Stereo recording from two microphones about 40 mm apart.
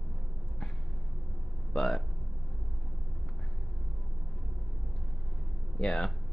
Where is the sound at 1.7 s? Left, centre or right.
Centre.